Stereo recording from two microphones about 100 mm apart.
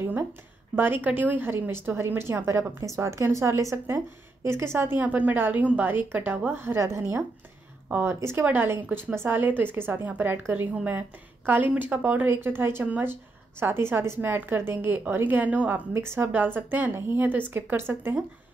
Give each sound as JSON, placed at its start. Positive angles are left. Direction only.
{"t": 0.7, "sound": "speech", "side_deg": -20}
{"t": 15.9, "sound": "speech", "side_deg": -25}